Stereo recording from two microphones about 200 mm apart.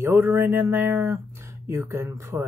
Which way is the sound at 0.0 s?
10° right (ahead or behind).